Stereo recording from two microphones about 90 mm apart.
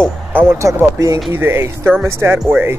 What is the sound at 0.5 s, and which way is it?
Speech, 35° right (ahead or behind).